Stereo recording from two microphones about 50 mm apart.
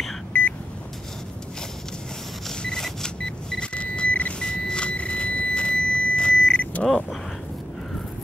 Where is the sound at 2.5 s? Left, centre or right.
Centre.